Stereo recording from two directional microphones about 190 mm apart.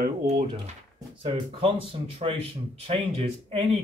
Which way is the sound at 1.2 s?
30° right (ahead or behind).